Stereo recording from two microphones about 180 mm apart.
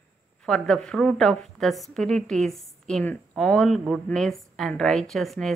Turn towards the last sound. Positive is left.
turn(degrees=0)  # may be behind; listen again after turning